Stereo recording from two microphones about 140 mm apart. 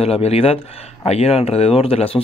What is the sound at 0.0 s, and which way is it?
Speech, 45° left (ahead or behind).